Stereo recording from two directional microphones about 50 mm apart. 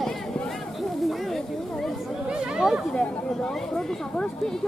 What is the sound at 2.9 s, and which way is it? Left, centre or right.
Speech, centre.